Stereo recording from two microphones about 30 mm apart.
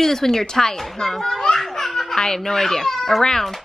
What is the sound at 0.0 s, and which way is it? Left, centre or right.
A woman's voice, centre.